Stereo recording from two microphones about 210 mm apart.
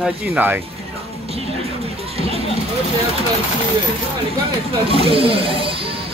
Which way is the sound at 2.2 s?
30° right (ahead or behind).